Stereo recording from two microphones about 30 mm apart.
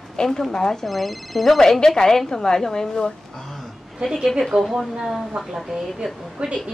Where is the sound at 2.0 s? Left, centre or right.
Centre.